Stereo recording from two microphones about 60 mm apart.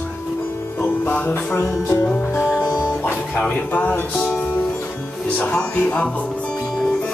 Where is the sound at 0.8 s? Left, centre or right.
Left.